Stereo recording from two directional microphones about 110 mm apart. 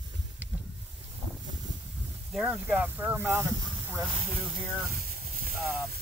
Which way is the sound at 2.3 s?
10° right (ahead or behind).